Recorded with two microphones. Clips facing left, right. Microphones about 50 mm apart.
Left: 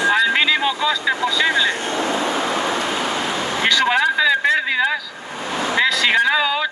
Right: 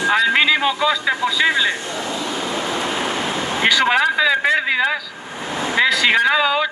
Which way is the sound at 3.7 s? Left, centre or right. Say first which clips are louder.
Right 1 dB; centre.